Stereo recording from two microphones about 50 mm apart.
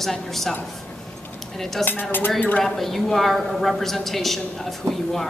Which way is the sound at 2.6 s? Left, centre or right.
Centre.